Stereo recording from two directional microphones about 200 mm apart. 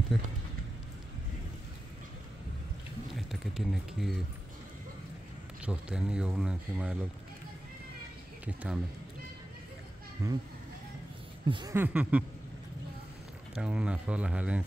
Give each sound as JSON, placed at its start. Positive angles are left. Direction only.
{"t": 0.1, "sound": "speech", "side_deg": 0}
{"t": 3.2, "sound": "a sound", "side_deg": 0}
{"t": 5.7, "sound": "speech", "side_deg": -5}
{"t": 10.2, "sound": "speech", "side_deg": -15}
{"t": 11.4, "sound": "speech", "side_deg": -25}
{"t": 11.7, "sound": "speech", "side_deg": -10}
{"t": 13.6, "sound": "speech", "side_deg": -5}